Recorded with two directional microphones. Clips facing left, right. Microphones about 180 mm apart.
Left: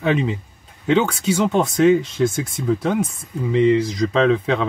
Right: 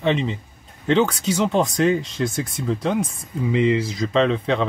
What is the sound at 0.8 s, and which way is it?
Speech, 5° left (ahead or behind).